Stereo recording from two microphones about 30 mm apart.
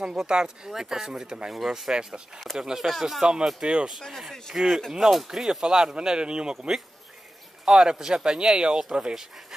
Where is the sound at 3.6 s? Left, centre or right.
Right.